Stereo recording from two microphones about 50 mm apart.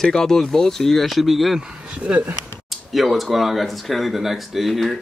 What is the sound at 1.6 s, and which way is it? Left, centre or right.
Speech, right.